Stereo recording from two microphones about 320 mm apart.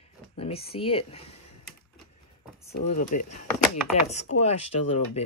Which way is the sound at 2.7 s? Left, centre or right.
Left.